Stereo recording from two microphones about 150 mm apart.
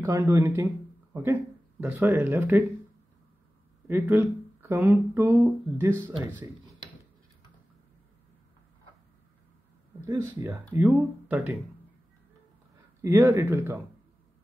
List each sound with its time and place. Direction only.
0.0 s speech: 20° right (ahead or behind)
3.8 s speech: 15° right (ahead or behind)
10.0 s speech: 20° right (ahead or behind)
13.0 s speech: 15° right (ahead or behind)